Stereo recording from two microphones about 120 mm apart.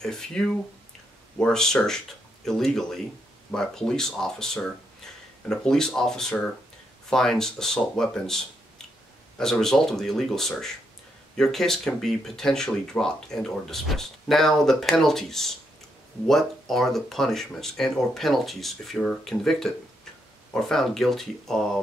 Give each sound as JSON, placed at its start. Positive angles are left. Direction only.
{"t": 0.0, "sound": "speech", "side_deg": 5}
{"t": 9.4, "sound": "speech", "side_deg": 5}